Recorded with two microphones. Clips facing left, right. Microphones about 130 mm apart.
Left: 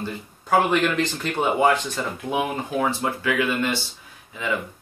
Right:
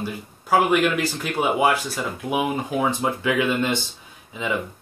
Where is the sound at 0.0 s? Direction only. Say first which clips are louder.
Right 1 dB; 5° right (ahead or behind).